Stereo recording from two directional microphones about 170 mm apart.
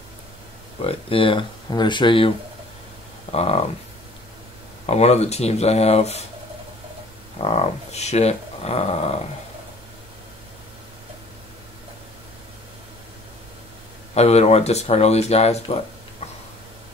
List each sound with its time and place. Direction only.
0.8 s speech: 30° left (ahead or behind)
4.8 s speech: 40° left (ahead or behind)
7.3 s speech: 40° left (ahead or behind)
14.1 s speech: 40° left (ahead or behind)